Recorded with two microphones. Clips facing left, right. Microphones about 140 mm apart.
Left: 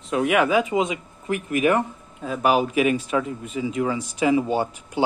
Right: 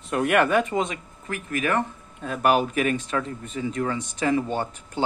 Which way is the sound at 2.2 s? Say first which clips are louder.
Left 1 dB; 5° left (ahead or behind).